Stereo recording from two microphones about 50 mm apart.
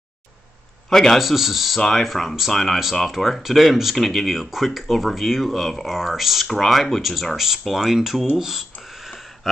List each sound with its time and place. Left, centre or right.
0.8 s a man's voice: centre
1.2 s speech: centre
1.8 s speech: centre
8.4 s a sound: centre